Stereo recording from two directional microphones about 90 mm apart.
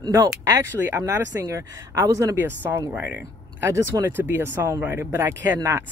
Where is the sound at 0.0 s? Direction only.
50° right (ahead or behind).